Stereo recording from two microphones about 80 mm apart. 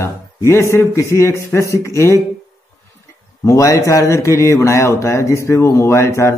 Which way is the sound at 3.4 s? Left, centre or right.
Left.